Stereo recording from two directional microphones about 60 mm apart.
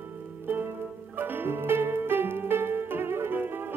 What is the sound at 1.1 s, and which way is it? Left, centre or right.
Music, right.